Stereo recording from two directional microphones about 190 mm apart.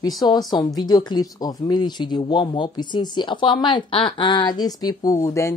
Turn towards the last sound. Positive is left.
turn(degrees=15)  # may be behind; listen again after turning